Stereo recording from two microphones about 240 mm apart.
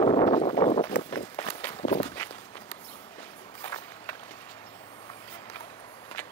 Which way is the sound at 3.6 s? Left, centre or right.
Centre.